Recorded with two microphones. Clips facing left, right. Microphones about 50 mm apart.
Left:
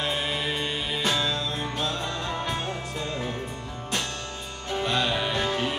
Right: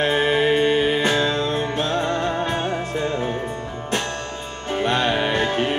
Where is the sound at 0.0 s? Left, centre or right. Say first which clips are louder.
Right 10 dB; right.